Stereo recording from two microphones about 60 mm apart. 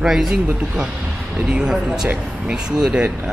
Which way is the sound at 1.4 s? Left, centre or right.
Centre.